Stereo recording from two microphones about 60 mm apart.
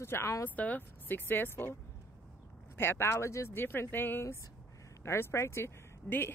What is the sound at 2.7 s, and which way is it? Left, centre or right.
Speech, left.